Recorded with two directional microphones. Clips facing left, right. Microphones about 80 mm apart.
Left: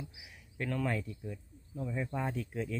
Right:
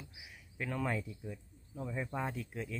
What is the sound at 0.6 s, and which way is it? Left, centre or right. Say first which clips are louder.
Speech: left 2 dB; centre.